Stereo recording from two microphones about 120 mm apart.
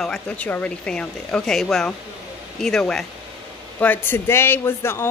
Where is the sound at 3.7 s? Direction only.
15° left (ahead or behind).